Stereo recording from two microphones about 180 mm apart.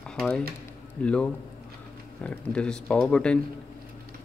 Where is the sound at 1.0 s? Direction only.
5° left (ahead or behind).